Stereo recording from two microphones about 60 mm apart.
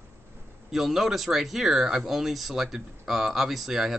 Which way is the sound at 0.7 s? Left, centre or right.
Centre.